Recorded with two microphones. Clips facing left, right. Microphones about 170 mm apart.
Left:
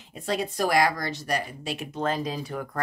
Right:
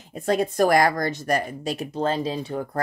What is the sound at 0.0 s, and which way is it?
A woman's voice, 45° right (ahead or behind).